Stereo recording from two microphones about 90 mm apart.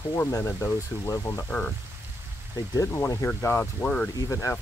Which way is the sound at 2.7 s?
30° left (ahead or behind).